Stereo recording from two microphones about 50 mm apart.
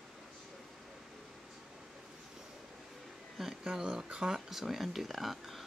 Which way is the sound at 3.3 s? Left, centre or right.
Centre.